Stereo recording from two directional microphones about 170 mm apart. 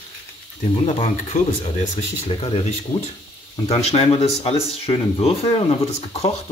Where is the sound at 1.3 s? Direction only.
40° left (ahead or behind).